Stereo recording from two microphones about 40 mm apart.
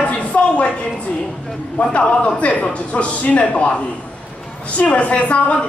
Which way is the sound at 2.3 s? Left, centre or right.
Left.